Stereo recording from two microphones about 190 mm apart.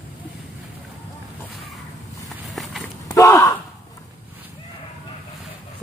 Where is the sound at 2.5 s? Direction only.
Centre (ahead or behind).